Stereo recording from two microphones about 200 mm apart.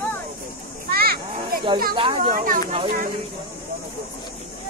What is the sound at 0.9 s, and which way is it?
Children playing, 50° right (ahead or behind).